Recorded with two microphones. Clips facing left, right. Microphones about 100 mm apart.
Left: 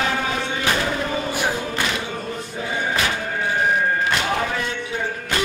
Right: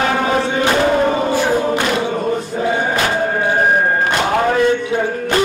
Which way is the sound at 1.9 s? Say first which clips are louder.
Right 10 dB; 50° right (ahead or behind).